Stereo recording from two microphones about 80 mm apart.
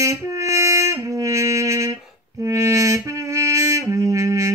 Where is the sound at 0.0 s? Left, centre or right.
Right.